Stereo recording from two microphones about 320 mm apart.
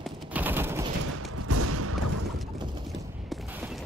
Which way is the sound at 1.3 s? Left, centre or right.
Right.